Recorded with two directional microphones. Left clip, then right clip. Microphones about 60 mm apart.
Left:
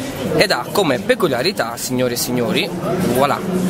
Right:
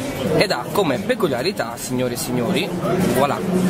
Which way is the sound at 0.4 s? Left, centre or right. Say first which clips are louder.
Left 4 dB; left.